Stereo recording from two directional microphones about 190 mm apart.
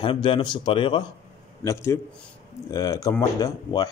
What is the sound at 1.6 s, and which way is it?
Speech, 15° left (ahead or behind).